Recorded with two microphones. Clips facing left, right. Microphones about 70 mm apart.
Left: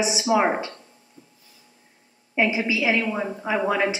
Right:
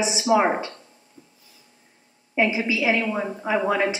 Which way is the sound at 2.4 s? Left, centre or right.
Centre.